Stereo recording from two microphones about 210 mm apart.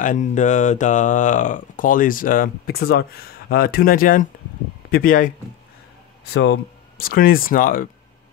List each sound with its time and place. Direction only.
0.0 s speech: 35° left (ahead or behind)
6.3 s speech: 50° left (ahead or behind)